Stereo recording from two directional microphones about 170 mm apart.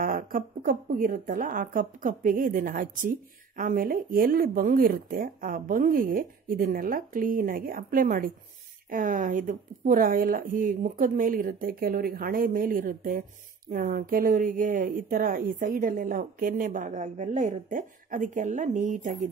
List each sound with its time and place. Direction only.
0.0 s speech: 55° right (ahead or behind)